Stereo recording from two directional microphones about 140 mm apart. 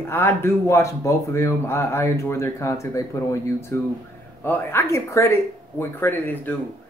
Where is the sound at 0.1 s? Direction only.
20° left (ahead or behind).